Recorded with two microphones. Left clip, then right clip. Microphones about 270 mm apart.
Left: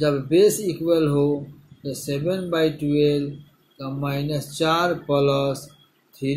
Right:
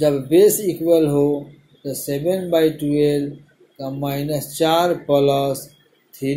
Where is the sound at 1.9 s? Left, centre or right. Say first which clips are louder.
Right 4 dB; centre.